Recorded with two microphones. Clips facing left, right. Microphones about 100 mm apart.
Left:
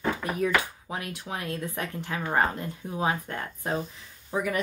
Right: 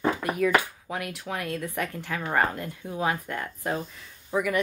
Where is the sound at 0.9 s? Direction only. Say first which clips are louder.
Right 2 dB; 25° left (ahead or behind).